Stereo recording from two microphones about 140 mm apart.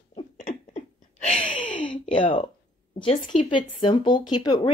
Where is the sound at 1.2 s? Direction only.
60° left (ahead or behind).